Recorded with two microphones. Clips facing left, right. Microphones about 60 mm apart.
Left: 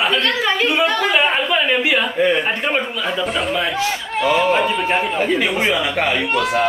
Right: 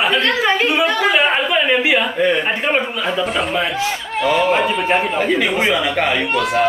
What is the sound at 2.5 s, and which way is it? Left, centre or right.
Speech, centre.